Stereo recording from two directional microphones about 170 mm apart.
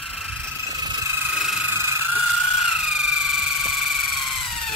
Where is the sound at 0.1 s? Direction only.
5° right (ahead or behind).